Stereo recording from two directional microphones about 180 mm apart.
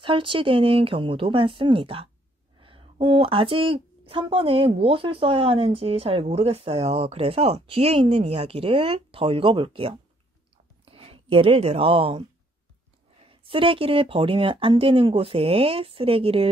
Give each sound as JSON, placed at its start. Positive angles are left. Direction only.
{"t": 0.0, "sound": "speech", "side_deg": -30}